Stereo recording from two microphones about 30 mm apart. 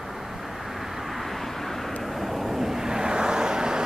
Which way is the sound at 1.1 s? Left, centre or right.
Centre.